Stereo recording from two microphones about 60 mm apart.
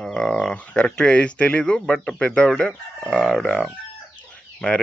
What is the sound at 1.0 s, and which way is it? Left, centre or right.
Speech, centre.